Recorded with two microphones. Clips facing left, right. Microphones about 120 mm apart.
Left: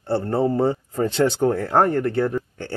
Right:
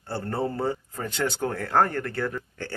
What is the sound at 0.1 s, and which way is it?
Speech, 25° left (ahead or behind).